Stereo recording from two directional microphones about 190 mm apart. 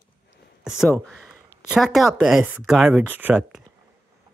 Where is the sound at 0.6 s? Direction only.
5° right (ahead or behind).